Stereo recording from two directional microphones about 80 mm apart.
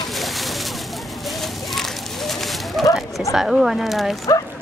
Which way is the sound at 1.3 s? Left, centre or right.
Centre.